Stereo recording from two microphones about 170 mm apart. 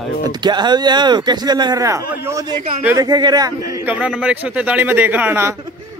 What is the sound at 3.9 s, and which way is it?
Speech, 5° right (ahead or behind).